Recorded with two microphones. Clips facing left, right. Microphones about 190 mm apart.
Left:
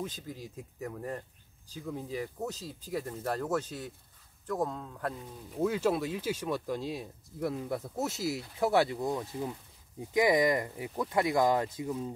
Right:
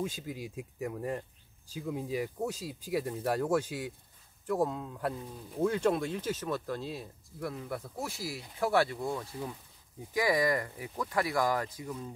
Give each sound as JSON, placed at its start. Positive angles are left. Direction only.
{"t": 0.0, "sound": "speech", "side_deg": -10}
{"t": 5.6, "sound": "speech", "side_deg": 5}